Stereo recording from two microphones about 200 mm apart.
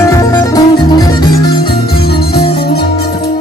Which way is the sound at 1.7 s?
50° left (ahead or behind).